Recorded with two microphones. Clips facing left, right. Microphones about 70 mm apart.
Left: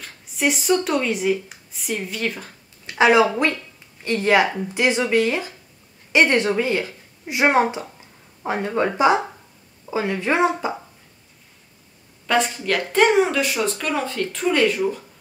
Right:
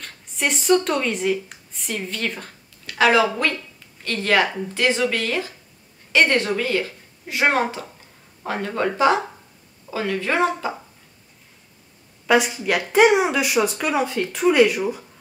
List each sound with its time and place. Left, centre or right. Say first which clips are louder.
0.0 s speech: left 3 dB; centre
2.9 s speech: left 2 dB; left
12.3 s speech: right 2 dB; centre